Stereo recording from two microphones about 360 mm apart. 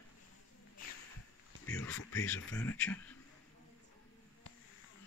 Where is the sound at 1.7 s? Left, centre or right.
Centre.